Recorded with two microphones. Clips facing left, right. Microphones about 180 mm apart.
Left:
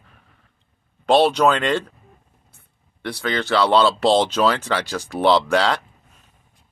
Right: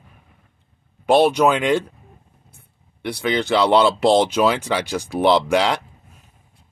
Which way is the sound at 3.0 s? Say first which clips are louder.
Right 3 dB; 15° right (ahead or behind).